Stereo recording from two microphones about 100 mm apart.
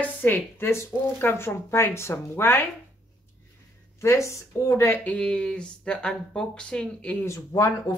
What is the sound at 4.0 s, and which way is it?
Speech, 30° left (ahead or behind).